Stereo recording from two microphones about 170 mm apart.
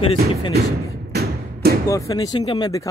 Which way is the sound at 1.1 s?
65° right (ahead or behind).